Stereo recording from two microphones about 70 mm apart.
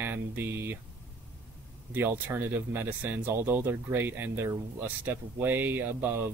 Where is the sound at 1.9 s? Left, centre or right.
Right.